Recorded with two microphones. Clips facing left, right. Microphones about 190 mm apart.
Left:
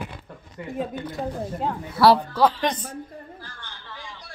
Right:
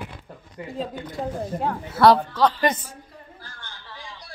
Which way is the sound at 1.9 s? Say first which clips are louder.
Right 1 dB; 5° left (ahead or behind).